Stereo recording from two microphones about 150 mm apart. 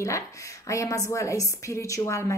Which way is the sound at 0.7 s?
20° left (ahead or behind).